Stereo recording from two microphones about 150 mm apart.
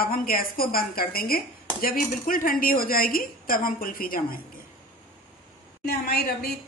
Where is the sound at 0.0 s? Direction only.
75° left (ahead or behind).